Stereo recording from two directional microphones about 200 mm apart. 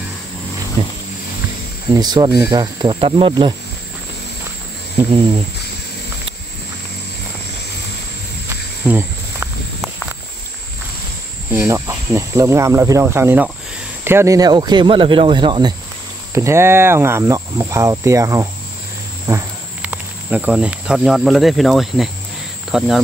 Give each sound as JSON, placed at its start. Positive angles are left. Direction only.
{"t": 0.8, "sound": "vehicle", "side_deg": -30}
{"t": 2.0, "sound": "speech", "side_deg": -20}
{"t": 8.8, "sound": "cricket", "side_deg": -10}
{"t": 11.5, "sound": "speech", "side_deg": -10}